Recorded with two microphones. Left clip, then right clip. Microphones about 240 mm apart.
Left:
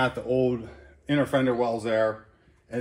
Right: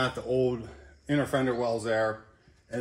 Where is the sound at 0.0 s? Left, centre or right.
Left.